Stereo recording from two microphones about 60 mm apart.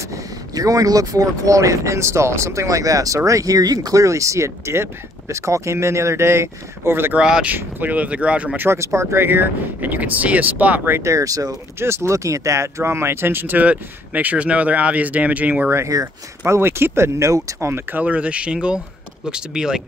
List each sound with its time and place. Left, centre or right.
0.1 s speech: right
3.3 s speech: right
7.2 s speech: centre
7.4 s speech: right
8.5 s speech: right
9.3 s speech: right
11.0 s speech: right
11.8 s speech: right
15.9 s speech: right
16.4 s speech: right
17.9 s speech: right